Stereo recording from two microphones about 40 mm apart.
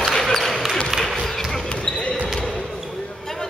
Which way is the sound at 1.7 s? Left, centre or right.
Centre.